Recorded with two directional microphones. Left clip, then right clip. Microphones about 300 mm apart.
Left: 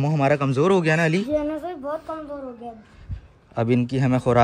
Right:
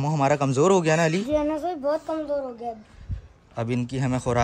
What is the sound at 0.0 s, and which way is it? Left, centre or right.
A man's voice, centre.